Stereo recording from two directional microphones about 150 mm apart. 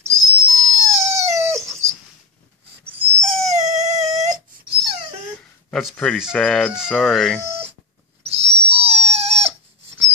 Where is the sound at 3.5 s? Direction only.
50° right (ahead or behind).